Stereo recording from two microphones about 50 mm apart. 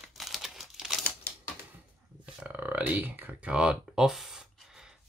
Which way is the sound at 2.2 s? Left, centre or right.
Right.